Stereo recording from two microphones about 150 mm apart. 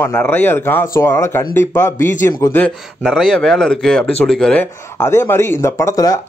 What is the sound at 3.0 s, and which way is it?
Speech, centre (ahead or behind).